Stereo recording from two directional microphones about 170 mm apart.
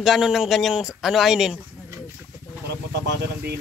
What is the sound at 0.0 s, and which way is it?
Speech, centre (ahead or behind).